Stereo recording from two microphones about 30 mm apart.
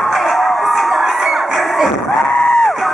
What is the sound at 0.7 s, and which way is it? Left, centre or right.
Crowd, centre.